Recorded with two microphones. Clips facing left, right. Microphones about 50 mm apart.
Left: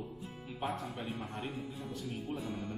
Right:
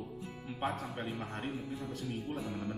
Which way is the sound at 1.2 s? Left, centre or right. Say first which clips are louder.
Right 1 dB; right.